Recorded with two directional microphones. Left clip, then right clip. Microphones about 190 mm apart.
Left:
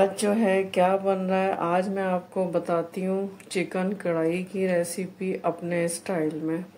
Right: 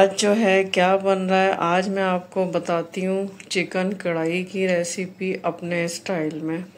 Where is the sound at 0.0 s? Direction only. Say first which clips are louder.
Right 5 dB; 5° right (ahead or behind).